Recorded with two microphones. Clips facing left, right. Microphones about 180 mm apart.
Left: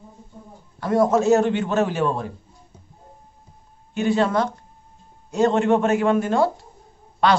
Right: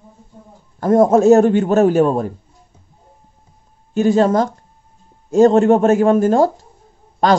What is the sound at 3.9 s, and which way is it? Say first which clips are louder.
A man's voice: right 6 dB; 45° right (ahead or behind).